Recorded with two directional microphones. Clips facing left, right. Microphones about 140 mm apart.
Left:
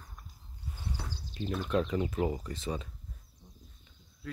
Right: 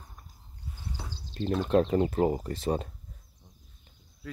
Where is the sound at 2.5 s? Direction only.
55° right (ahead or behind).